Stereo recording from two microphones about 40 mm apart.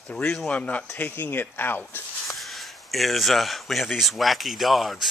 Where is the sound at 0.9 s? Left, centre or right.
Left.